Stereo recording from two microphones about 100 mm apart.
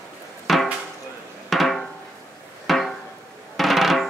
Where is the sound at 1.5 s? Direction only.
Centre (ahead or behind).